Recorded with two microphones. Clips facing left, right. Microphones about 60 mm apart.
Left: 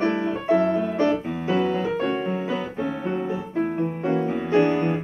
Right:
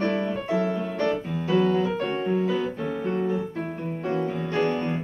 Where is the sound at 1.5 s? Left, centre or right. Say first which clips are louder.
Right 1 dB; centre.